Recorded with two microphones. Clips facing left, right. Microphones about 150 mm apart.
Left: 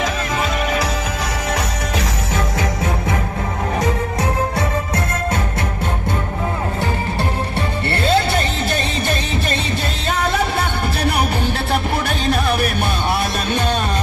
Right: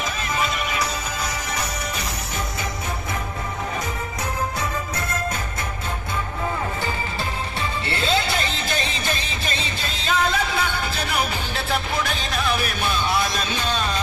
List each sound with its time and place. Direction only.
1.5 s music: 90° left
3.8 s music: 85° left
7.9 s music: 60° left (ahead or behind)